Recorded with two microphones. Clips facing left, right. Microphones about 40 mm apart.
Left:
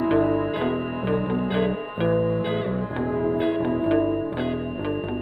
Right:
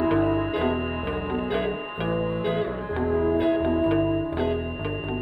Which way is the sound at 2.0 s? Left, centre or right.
Centre.